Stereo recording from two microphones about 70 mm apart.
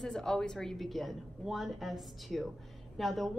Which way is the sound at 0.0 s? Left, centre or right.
Centre.